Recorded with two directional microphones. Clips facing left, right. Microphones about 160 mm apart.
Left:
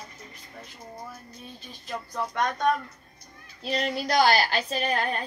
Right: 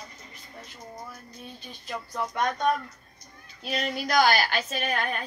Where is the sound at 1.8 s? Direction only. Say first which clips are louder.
Even; 5° right (ahead or behind).